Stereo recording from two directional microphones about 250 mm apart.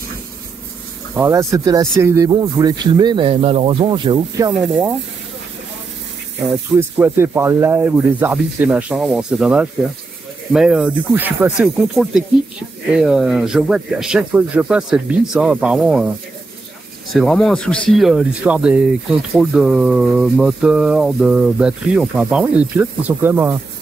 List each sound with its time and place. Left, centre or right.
1.1 s speech: centre
4.5 s speech: centre
6.8 s speech: centre
17.1 s speech: centre